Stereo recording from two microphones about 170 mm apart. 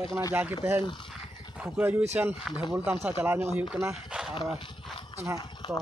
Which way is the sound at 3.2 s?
15° right (ahead or behind).